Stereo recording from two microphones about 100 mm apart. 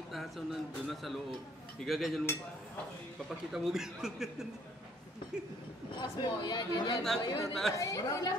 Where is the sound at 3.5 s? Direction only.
5° right (ahead or behind).